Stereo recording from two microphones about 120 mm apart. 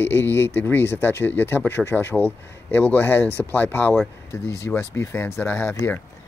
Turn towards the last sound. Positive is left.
turn(degrees=15)  # may be behind; listen again after turning